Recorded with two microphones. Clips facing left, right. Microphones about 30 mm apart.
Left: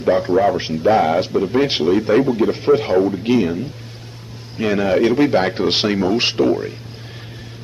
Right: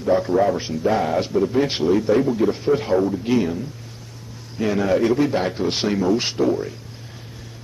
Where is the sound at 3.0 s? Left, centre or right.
Left.